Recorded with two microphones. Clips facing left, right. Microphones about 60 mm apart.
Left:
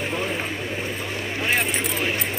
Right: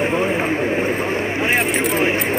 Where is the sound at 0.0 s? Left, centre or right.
Right.